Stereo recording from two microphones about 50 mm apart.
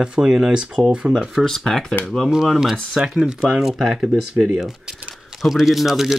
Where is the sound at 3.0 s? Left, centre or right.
Centre.